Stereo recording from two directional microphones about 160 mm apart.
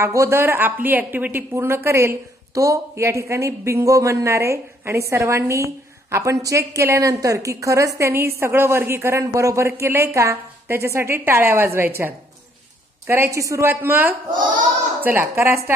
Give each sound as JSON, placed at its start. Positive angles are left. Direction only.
{"t": 0.0, "sound": "speech", "side_deg": -15}
{"t": 13.0, "sound": "speech", "side_deg": -15}